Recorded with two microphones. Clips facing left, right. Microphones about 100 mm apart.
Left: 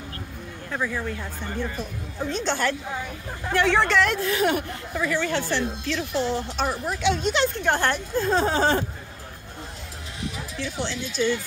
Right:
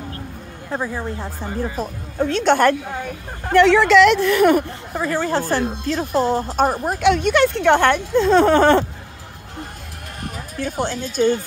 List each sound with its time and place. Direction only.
0.7 s speech: 30° right (ahead or behind)
1.8 s speech: 40° right (ahead or behind)
2.1 s speech: 70° right (ahead or behind)
3.4 s speech: 75° right (ahead or behind); by 4.6 s 55° right (ahead or behind)
4.9 s speech: 40° right (ahead or behind); by 8.8 s 65° right (ahead or behind)
10.3 s speech: 45° right (ahead or behind)